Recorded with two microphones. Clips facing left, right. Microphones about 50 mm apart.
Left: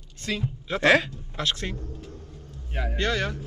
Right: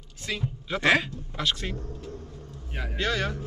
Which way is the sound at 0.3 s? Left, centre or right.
Centre.